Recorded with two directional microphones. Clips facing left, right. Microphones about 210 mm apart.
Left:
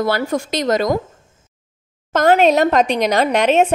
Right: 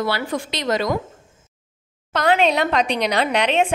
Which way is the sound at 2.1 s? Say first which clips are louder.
Left 5 dB; 45° left (ahead or behind).